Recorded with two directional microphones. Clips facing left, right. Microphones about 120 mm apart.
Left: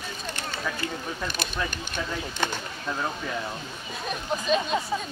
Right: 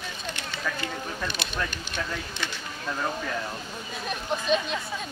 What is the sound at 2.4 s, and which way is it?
Speech, 45° left (ahead or behind).